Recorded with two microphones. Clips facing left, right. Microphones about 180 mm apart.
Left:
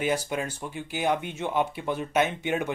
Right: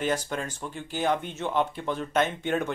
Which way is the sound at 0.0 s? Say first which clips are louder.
Left 1 dB; 10° left (ahead or behind).